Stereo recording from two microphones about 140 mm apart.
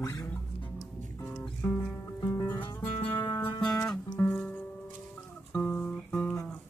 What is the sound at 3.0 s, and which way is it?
Music, 15° left (ahead or behind).